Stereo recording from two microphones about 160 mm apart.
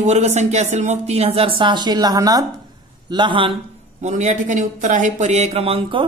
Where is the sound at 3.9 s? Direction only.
45° right (ahead or behind).